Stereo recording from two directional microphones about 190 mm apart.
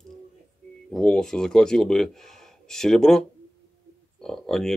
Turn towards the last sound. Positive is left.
turn(degrees=0)  # may be behind; listen again after turning